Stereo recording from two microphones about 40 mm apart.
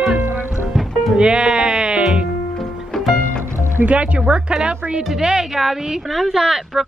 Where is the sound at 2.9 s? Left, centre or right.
Centre.